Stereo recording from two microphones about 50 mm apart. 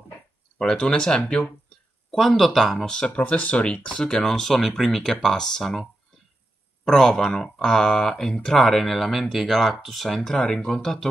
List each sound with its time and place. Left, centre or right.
0.6 s speech: centre
2.0 s speech: centre
3.2 s speech: left; by 5.9 s centre
6.9 s speech: centre